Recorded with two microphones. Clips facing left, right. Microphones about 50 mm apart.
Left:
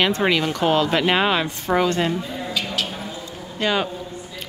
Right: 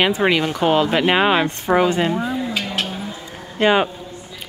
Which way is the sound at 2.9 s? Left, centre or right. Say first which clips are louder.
Right 3 dB; centre.